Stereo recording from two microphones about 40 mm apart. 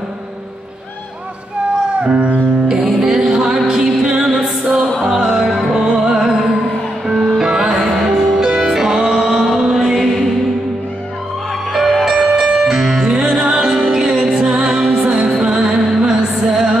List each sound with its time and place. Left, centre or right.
2.0 s music: right
2.7 s music: centre
5.1 s music: centre
7.4 s music: centre
8.4 s music: centre
11.7 s music: centre